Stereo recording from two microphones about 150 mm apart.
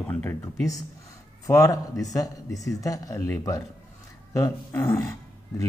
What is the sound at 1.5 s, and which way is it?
Speech, 20° left (ahead or behind).